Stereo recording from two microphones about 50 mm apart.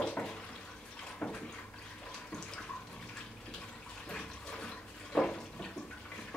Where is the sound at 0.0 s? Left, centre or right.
Centre.